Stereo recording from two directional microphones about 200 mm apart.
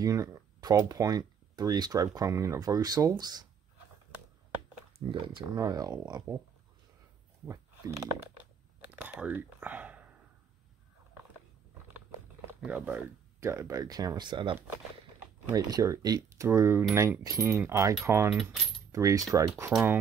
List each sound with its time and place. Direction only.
0.0 s speech: 15° right (ahead or behind)
5.2 s speech: 20° right (ahead or behind)
9.0 s whispering: 5° right (ahead or behind)
12.4 s speech: 10° right (ahead or behind)